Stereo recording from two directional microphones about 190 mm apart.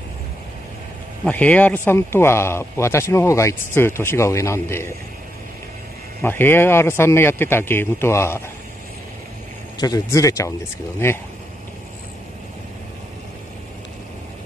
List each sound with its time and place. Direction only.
1.2 s speech: 10° left (ahead or behind)
6.2 s speech: 10° left (ahead or behind)
9.8 s speech: 20° left (ahead or behind)